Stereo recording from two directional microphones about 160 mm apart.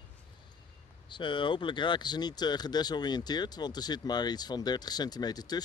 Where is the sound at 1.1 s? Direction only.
30° left (ahead or behind).